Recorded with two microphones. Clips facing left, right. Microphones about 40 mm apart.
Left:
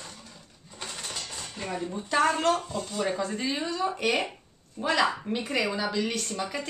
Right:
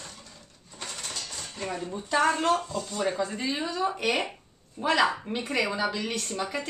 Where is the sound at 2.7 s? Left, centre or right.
Centre.